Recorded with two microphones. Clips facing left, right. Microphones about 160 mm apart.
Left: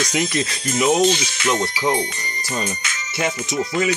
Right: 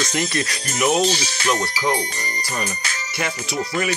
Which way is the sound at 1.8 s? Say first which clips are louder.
Left 2 dB; 25° left (ahead or behind).